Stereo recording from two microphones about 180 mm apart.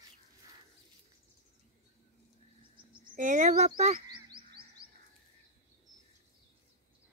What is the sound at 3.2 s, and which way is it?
Speech, 45° right (ahead or behind).